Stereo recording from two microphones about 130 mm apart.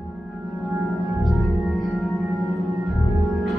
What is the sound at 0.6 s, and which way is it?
Music, centre (ahead or behind).